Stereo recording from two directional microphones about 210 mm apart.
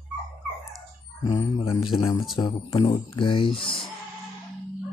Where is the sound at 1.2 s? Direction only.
20° left (ahead or behind).